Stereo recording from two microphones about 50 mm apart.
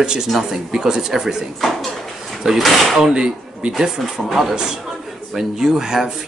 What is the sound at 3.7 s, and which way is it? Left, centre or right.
Speech, centre.